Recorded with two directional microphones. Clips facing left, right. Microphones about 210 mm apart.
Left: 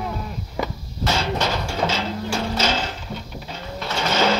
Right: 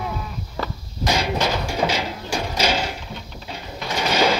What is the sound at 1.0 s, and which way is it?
Music, 15° right (ahead or behind).